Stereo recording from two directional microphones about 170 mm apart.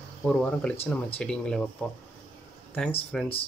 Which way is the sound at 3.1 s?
5° left (ahead or behind).